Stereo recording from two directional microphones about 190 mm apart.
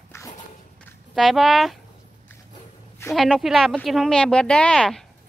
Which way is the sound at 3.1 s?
Centre (ahead or behind).